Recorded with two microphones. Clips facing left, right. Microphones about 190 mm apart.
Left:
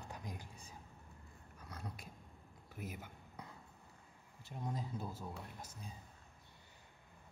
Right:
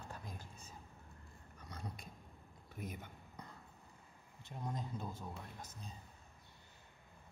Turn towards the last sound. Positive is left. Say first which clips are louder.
# even
turn(degrees=10)  # may be behind; listen again after turning